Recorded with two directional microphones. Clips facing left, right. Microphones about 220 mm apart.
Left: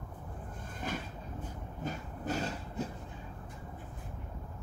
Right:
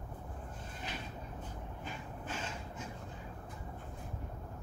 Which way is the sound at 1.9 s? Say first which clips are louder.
Left 8 dB; 40° left (ahead or behind).